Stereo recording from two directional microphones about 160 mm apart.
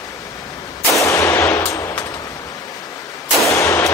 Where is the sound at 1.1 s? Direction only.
20° left (ahead or behind).